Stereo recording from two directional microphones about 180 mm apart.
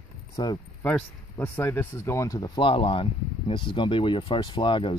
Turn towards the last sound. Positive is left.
turn(degrees=25)  # may be behind; listen again after turning